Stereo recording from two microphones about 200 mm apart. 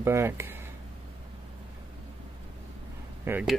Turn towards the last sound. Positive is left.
turn(degrees=-10)  # may be behind; listen again after turning